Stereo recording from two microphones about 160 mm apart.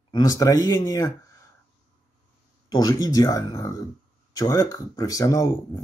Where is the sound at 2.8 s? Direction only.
20° left (ahead or behind).